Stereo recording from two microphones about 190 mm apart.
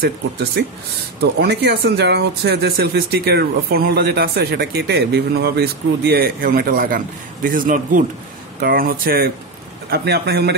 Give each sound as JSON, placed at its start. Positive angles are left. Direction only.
{"t": 0.0, "sound": "speech", "side_deg": -60}